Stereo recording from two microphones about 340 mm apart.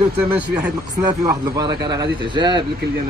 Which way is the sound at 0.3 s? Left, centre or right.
Centre.